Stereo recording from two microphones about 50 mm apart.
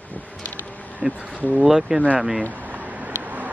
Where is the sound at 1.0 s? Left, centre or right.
Centre.